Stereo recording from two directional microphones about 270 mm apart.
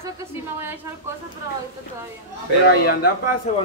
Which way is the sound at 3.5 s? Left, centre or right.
Left.